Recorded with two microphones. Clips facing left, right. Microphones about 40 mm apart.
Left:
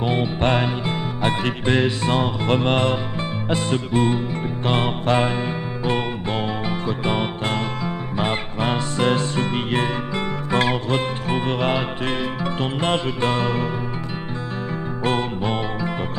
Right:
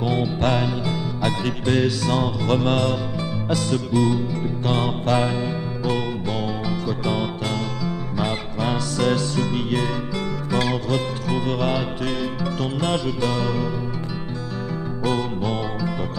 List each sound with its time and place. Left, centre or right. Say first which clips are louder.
0.0 s music: left 1 dB; left
15.0 s music: left 1 dB; left